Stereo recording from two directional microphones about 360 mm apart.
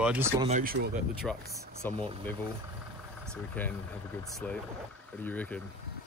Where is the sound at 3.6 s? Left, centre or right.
Centre.